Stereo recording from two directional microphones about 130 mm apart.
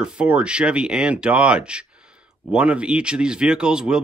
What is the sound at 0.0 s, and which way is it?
Speech, 10° right (ahead or behind).